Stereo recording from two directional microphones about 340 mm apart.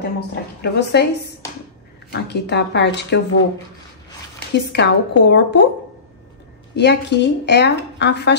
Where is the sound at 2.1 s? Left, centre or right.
Left.